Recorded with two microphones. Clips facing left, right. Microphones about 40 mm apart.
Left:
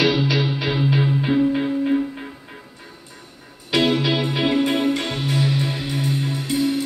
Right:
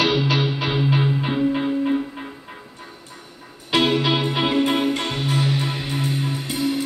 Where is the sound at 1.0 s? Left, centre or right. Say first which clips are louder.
Left 2 dB; centre.